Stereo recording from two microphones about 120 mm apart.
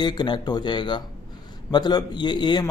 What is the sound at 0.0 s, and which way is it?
Speech, 35° left (ahead or behind).